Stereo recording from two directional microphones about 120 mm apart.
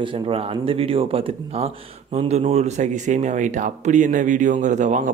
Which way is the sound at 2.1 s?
65° right (ahead or behind).